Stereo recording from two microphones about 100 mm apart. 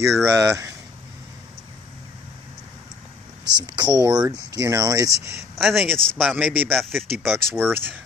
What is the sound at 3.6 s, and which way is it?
Speech, 45° right (ahead or behind).